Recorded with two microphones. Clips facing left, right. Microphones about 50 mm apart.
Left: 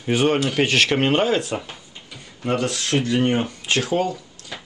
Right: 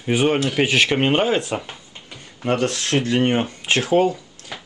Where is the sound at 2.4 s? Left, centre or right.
Right.